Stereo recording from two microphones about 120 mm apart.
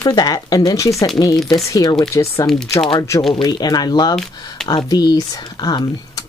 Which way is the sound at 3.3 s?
35° left (ahead or behind).